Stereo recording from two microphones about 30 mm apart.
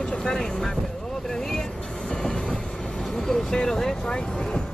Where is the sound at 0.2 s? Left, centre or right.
Left.